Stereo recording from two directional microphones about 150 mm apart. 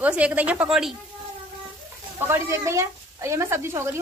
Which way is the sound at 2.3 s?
20° right (ahead or behind).